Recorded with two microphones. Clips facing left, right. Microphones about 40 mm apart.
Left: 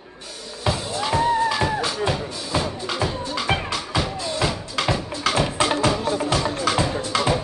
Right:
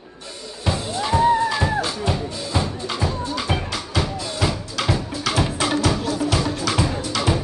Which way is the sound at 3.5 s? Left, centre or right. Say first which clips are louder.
Left 3 dB; left.